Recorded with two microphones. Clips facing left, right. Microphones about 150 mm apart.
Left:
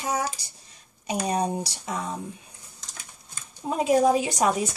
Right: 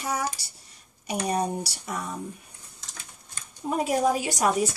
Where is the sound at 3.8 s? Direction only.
25° left (ahead or behind).